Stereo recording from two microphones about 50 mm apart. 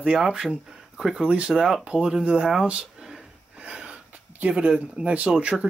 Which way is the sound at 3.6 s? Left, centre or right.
Right.